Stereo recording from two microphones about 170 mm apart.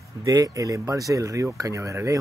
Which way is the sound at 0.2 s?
20° right (ahead or behind).